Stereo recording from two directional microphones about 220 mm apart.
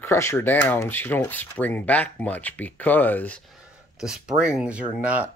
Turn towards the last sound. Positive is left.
turn(degrees=-5)  # may be behind; listen again after turning